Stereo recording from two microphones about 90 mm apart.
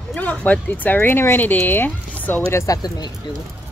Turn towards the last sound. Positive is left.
turn(degrees=50)  # may be behind; listen again after turning